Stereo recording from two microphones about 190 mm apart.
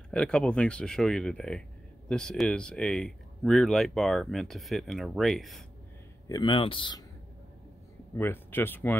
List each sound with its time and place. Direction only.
0.1 s speech: 5° left (ahead or behind)
6.2 s speech: 20° left (ahead or behind)
8.2 s speech: 10° left (ahead or behind)